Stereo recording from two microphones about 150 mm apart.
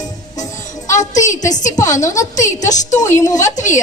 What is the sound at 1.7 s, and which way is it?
Speech, 20° left (ahead or behind).